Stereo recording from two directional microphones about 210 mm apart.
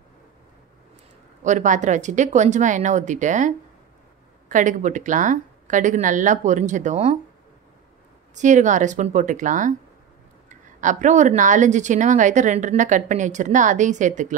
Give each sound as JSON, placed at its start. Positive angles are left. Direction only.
{"t": 1.4, "sound": "speech", "side_deg": -35}
{"t": 8.4, "sound": "speech", "side_deg": -35}